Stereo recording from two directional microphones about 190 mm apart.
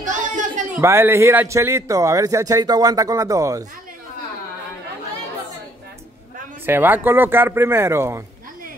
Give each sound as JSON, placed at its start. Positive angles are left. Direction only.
{"t": 0.0, "sound": "a sound", "side_deg": -40}
{"t": 0.7, "sound": "speech", "side_deg": -15}
{"t": 6.6, "sound": "speech", "side_deg": -10}